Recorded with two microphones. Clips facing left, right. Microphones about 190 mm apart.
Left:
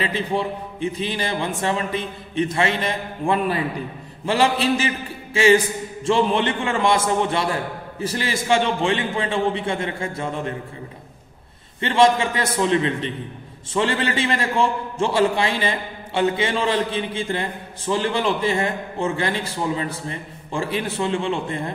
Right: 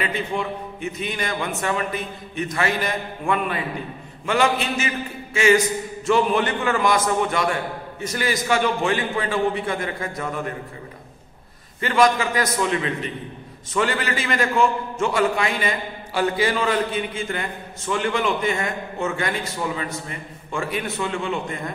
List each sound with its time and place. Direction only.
0.0 s a man's voice: 30° left (ahead or behind)
11.8 s a man's voice: 30° left (ahead or behind)